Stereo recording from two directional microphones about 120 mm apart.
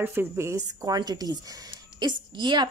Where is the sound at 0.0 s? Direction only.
20° right (ahead or behind).